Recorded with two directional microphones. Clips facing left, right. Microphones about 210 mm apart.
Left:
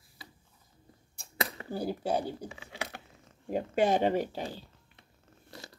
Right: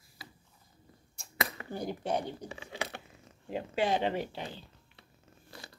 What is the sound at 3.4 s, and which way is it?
Speech, 45° left (ahead or behind).